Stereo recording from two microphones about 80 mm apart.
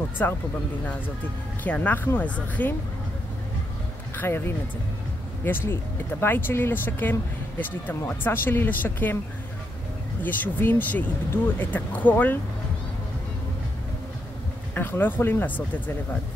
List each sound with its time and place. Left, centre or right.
0.2 s speech: left
1.6 s speech: centre
4.2 s speech: left
10.2 s speech: left
14.7 s speech: left